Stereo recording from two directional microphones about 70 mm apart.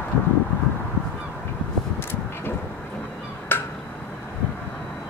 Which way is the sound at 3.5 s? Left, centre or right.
Left.